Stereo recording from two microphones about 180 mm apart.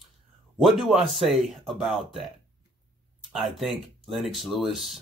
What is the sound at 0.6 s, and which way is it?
Speech, centre (ahead or behind).